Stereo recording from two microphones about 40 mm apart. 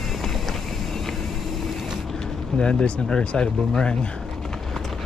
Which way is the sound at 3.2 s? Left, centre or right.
Left.